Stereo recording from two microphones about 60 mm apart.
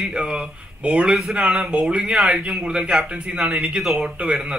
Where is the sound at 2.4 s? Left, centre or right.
Centre.